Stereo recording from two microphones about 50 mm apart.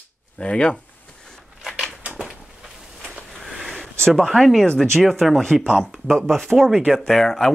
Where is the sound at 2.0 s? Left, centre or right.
Right.